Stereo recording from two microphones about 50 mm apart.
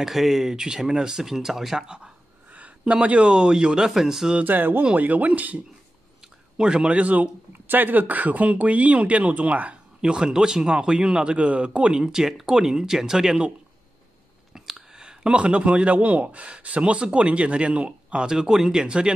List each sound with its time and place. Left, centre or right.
0.0 s a man's voice: centre
2.9 s a man's voice: right; by 4.3 s centre
4.5 s speech: right
6.6 s speech: centre
10.0 s a man's voice: centre
14.5 s speech: centre
18.3 s a man's voice: centre